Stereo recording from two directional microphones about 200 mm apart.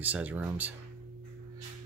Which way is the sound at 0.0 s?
10° right (ahead or behind).